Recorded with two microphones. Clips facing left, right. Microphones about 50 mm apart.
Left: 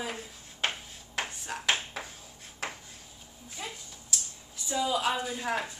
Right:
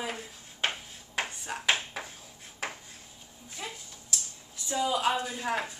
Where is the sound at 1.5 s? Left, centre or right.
Centre.